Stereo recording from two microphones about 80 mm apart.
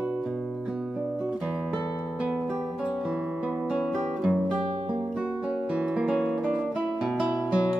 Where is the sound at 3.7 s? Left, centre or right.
Centre.